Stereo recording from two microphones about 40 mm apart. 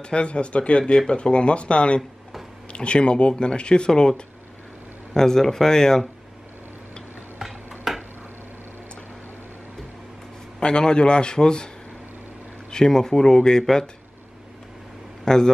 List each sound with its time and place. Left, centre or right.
0.0 s speech: left
7.9 s a sound: centre
10.6 s speech: left
12.7 s speech: centre
15.2 s speech: centre